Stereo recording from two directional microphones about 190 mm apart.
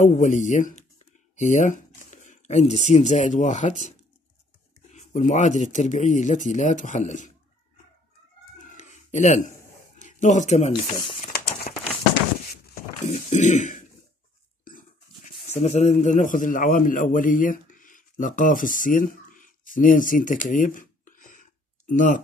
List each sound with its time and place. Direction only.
0.0 s speech: 40° left (ahead or behind)
4.9 s speech: 40° left (ahead or behind)
8.5 s a sound: 40° left (ahead or behind)
9.9 s speech: 40° left (ahead or behind)
10.7 s speech: 25° left (ahead or behind)
11.7 s a sound: 40° left (ahead or behind)
13.0 s speech: 40° left (ahead or behind)
15.2 s a man's voice: 35° left (ahead or behind)